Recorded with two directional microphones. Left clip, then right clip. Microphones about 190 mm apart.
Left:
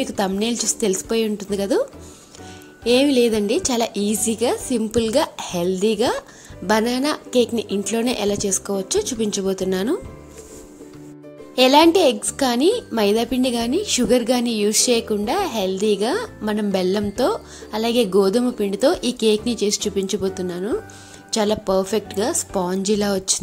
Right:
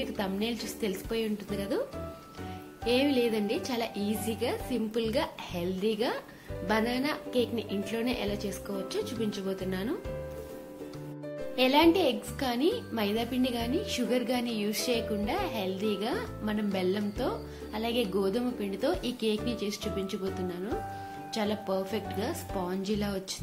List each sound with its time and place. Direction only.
0.0 s a woman's voice: 50° left (ahead or behind)
2.8 s a woman's voice: 50° left (ahead or behind)
11.5 s a woman's voice: 55° left (ahead or behind)